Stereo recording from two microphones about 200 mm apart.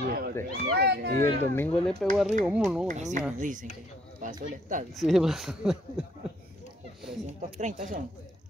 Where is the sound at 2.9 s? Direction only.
35° right (ahead or behind).